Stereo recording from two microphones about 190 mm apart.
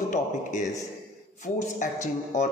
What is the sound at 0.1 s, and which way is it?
A man's voice, 40° left (ahead or behind).